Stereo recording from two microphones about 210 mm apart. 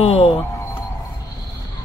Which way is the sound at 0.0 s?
30° left (ahead or behind).